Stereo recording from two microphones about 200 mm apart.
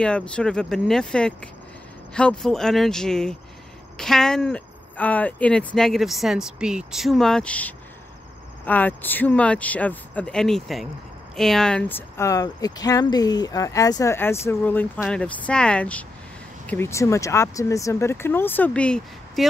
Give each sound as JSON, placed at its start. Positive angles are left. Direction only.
{"t": 0.0, "sound": "speech", "side_deg": 5}